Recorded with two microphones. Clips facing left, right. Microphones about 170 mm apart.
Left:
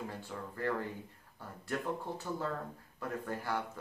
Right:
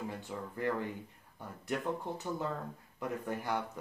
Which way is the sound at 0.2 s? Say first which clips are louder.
Right 1 dB; 15° right (ahead or behind).